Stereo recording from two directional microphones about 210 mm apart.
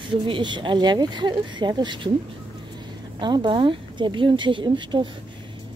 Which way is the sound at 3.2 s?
20° right (ahead or behind).